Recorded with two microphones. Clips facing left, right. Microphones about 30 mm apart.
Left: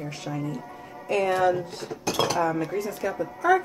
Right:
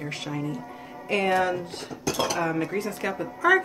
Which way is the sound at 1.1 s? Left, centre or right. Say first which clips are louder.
Even; right.